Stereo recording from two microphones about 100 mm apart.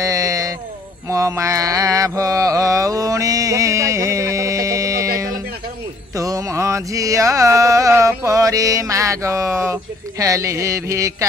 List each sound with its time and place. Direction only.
0.0 s a sound: 35° right (ahead or behind)
1.0 s mantra: 30° right (ahead or behind)
6.1 s music: 35° right (ahead or behind)